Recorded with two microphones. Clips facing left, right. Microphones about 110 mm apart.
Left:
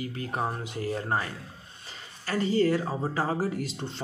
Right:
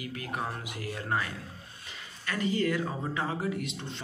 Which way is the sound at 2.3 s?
35° left (ahead or behind).